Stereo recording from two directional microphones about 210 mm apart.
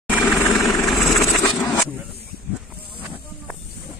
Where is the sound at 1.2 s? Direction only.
15° left (ahead or behind).